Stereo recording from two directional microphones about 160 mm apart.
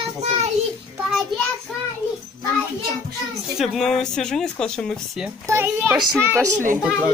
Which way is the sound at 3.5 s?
Centre (ahead or behind).